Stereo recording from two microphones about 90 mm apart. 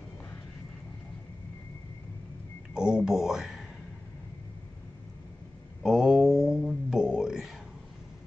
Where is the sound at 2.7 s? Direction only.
10° right (ahead or behind).